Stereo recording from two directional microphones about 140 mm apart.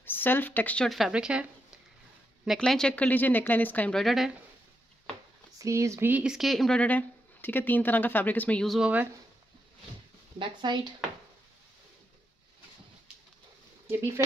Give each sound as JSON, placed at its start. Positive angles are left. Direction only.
{"t": 0.0, "sound": "speech", "side_deg": 15}
{"t": 0.8, "sound": "speech", "side_deg": 0}
{"t": 4.0, "sound": "speech", "side_deg": 0}
{"t": 5.6, "sound": "speech", "side_deg": -20}
{"t": 10.4, "sound": "speech", "side_deg": -30}
{"t": 13.8, "sound": "speech", "side_deg": -20}